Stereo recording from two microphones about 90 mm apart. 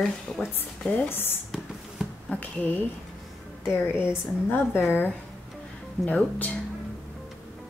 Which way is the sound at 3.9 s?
25° left (ahead or behind).